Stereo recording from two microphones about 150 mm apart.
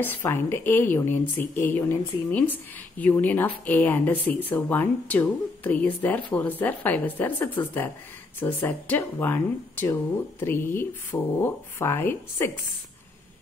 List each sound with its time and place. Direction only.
0.0 s speech: 15° left (ahead or behind)